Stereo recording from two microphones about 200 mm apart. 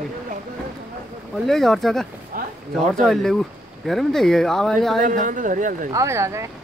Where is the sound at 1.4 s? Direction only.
Centre (ahead or behind).